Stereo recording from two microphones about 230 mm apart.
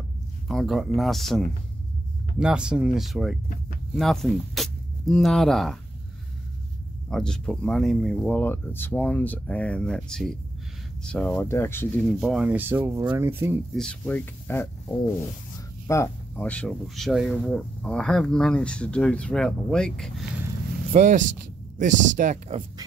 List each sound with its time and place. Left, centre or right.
0.5 s speech: centre
7.1 s speech: centre
13.7 s speech: centre
15.0 s a sound: centre
15.9 s speech: centre
20.9 s speech: right